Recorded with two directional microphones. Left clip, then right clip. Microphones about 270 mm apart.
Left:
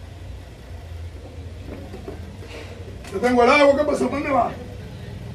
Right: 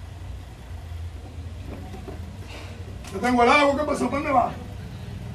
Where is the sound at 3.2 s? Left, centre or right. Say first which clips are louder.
Left 3 dB; right.